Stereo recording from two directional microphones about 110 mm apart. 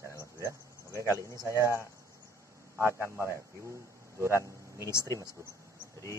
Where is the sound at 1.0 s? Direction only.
30° right (ahead or behind).